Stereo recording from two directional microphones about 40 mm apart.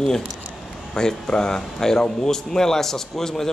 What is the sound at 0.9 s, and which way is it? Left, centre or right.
A man's voice, centre.